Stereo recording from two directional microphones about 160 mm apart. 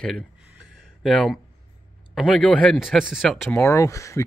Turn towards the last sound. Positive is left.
turn(degrees=20)  # may be behind; listen again after turning